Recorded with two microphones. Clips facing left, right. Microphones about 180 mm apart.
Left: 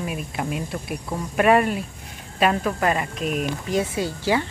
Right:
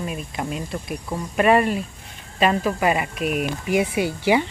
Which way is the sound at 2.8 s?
10° right (ahead or behind).